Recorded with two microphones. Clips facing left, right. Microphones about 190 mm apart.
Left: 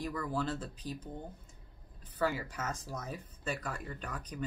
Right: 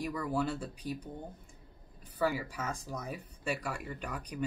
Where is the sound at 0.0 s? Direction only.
10° right (ahead or behind).